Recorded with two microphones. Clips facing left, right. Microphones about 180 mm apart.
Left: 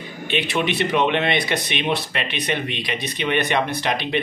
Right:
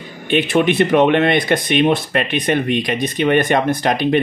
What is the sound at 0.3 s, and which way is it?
Speech, 50° right (ahead or behind).